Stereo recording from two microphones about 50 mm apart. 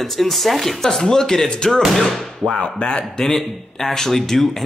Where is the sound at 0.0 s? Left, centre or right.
Centre.